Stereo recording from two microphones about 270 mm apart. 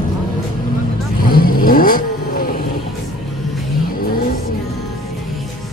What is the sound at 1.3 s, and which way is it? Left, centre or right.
Vehicle, left.